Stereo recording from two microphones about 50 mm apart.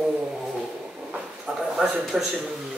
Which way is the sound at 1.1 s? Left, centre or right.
Centre.